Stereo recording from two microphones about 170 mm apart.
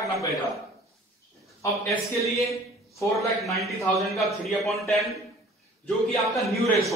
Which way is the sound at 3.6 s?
Centre (ahead or behind).